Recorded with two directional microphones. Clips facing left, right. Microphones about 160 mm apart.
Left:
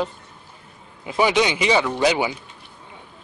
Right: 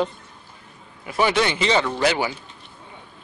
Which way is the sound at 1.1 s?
15° left (ahead or behind).